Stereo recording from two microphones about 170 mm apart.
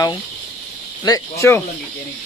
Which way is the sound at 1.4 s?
15° left (ahead or behind).